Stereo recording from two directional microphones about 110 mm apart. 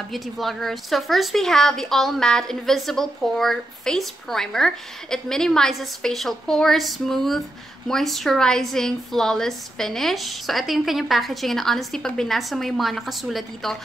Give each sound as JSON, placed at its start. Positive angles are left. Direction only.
{"t": 0.1, "sound": "a woman's voice", "side_deg": 0}